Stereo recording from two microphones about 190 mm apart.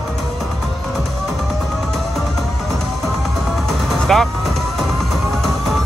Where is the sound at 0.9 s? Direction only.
Centre (ahead or behind).